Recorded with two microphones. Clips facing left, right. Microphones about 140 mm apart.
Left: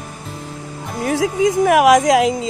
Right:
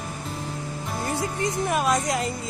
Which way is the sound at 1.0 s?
90° left.